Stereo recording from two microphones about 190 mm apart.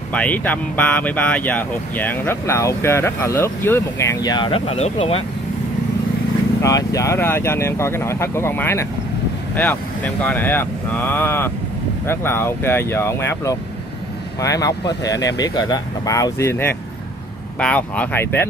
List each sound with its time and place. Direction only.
0.1 s speech: 10° left (ahead or behind); by 5.2 s 30° left (ahead or behind)
6.6 s speech: 15° left (ahead or behind)